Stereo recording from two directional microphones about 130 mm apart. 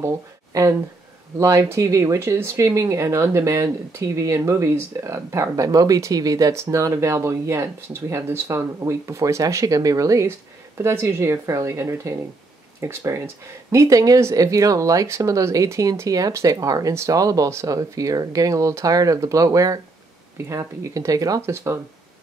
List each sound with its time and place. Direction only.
0.0 s speech: 25° right (ahead or behind)